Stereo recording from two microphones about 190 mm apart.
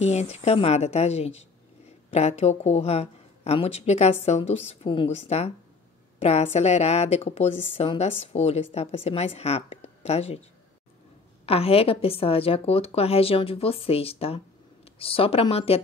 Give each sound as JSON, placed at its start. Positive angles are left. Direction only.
{"t": 0.0, "sound": "a woman's voice", "side_deg": 35}
{"t": 11.4, "sound": "a woman's voice", "side_deg": 30}